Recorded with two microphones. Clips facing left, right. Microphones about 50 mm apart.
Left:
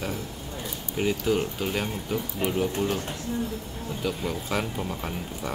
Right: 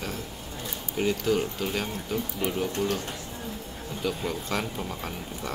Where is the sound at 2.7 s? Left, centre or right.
Left.